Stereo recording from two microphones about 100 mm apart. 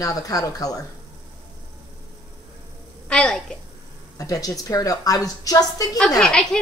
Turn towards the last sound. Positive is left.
turn(degrees=5)  # may be behind; listen again after turning